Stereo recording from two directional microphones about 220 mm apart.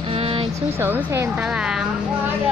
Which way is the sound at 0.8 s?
10° right (ahead or behind).